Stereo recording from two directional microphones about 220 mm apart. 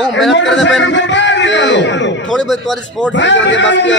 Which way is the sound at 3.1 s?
55° left (ahead or behind).